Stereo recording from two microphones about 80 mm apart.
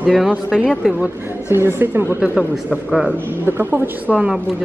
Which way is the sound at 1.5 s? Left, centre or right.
Right.